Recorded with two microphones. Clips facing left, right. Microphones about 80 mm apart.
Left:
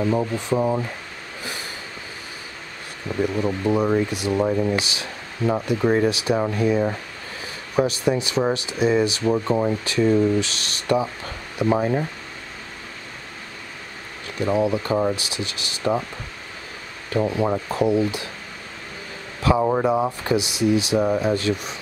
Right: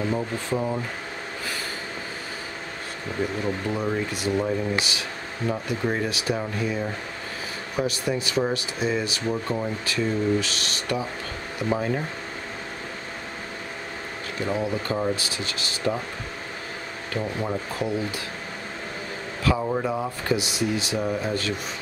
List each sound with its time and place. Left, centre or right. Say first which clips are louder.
0.0 s speech: left 5 dB; centre
3.4 s speech: left 6 dB; left
5.7 s speech: left 7 dB; left
6.3 s speech: left 6 dB; left
7.7 s speech: left 6 dB; left
9.6 s speech: left 6 dB; left
9.9 s speech: left 5 dB; left
14.4 s speech: left 6 dB; left
17.1 s speech: left 7 dB; left
19.4 s speech: left 6 dB; left